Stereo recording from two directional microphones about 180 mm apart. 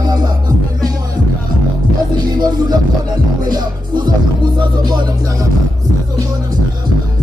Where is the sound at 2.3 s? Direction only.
25° right (ahead or behind).